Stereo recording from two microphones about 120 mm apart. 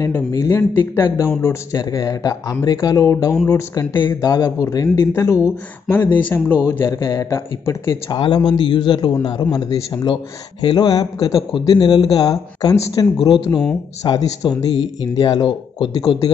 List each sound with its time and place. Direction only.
0.0 s speech: 25° left (ahead or behind)
8.1 s a man's voice: 45° left (ahead or behind)
11.5 s a man's voice: 40° left (ahead or behind)
13.2 s speech: 45° left (ahead or behind)
14.0 s a man's voice: 35° left (ahead or behind)